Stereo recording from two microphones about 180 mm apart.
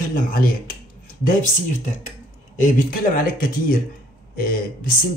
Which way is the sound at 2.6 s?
50° left (ahead or behind).